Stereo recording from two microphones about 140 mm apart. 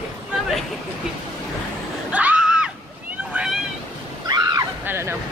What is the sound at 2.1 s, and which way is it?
Screaming, 10° right (ahead or behind).